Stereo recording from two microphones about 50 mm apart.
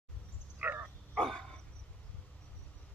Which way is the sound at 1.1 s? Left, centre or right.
Centre.